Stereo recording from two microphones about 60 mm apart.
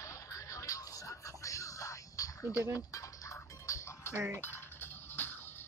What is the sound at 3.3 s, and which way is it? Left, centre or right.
Music, left.